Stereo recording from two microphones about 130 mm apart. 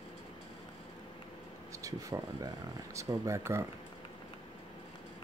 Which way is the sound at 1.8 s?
25° right (ahead or behind).